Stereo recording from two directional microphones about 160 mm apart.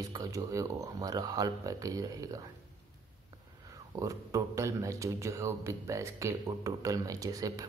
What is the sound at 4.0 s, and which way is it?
Speech, 20° right (ahead or behind).